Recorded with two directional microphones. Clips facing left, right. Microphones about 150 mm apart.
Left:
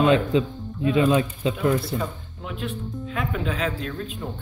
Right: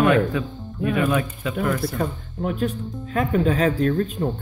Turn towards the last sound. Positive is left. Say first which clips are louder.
# right 10 dB
turn(degrees=-45)  # may be behind; listen again after turning